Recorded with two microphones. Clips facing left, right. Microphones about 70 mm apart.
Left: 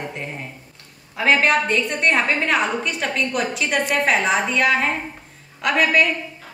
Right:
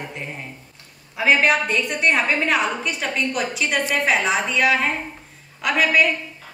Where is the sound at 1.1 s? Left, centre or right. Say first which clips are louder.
Even; centre.